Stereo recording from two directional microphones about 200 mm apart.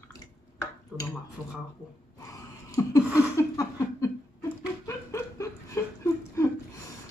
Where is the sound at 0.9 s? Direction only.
5° right (ahead or behind).